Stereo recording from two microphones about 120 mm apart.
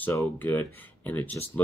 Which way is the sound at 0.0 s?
15° left (ahead or behind).